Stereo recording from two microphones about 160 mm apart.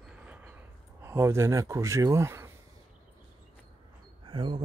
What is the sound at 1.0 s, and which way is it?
Speech, 15° right (ahead or behind).